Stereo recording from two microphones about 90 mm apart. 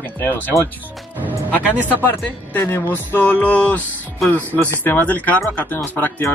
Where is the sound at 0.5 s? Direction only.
35° left (ahead or behind).